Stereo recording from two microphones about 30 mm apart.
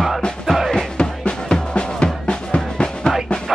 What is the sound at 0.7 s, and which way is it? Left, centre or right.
Music, left.